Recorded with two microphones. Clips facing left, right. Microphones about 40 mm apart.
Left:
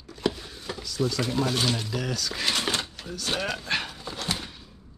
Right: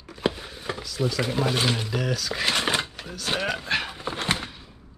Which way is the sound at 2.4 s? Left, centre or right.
Centre.